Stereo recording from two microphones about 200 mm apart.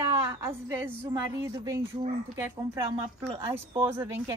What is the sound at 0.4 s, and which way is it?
A woman's voice, 10° right (ahead or behind).